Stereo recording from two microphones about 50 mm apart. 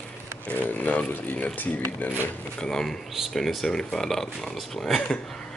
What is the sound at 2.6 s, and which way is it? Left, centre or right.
Speech, centre.